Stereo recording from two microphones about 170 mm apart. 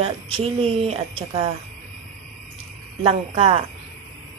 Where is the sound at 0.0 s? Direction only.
35° right (ahead or behind).